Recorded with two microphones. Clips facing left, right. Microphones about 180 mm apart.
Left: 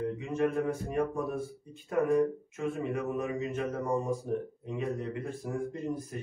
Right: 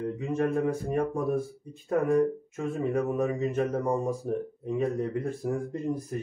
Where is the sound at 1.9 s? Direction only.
40° right (ahead or behind).